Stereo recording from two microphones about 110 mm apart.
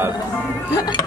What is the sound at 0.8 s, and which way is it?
Speech, 30° left (ahead or behind).